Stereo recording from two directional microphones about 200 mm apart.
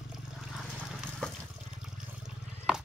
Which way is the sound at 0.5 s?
Centre (ahead or behind).